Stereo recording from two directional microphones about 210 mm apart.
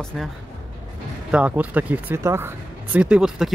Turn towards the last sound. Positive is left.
turn(degrees=-5)  # may be behind; listen again after turning